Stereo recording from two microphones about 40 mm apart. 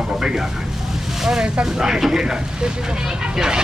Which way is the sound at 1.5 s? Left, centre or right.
Centre.